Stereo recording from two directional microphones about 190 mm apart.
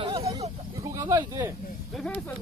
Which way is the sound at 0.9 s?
15° right (ahead or behind).